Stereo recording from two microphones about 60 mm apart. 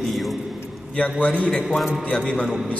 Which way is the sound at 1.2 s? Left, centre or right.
Left.